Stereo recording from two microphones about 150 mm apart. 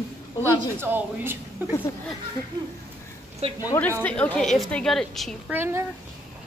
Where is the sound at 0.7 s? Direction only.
15° right (ahead or behind).